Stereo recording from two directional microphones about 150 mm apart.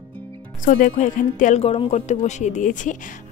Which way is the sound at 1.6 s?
40° left (ahead or behind).